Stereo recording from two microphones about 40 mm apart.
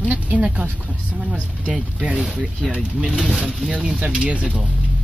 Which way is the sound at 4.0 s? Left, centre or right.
Right.